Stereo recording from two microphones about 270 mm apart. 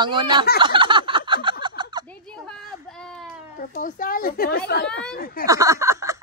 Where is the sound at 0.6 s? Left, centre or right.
Centre.